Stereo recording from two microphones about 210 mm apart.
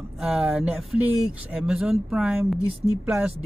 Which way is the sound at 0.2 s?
5° right (ahead or behind).